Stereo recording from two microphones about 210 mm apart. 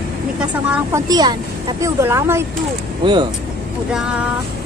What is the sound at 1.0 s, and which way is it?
A man's voice, 20° right (ahead or behind).